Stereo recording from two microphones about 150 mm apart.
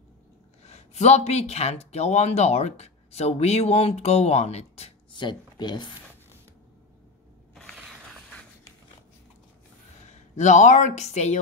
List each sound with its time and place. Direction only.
0.7 s speech: 45° left (ahead or behind)
5.1 s speech: 30° left (ahead or behind)
10.0 s speech: 50° left (ahead or behind)